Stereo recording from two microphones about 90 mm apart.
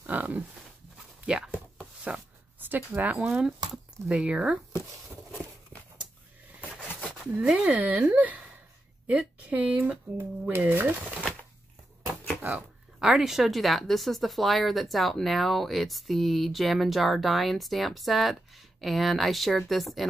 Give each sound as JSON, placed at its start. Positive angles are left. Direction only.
{"t": 0.0, "sound": "pig", "side_deg": -20}
{"t": 1.2, "sound": "a sound", "side_deg": -10}
{"t": 3.2, "sound": "speech", "side_deg": -5}
{"t": 7.3, "sound": "speech", "side_deg": -15}
{"t": 12.5, "sound": "speech", "side_deg": -5}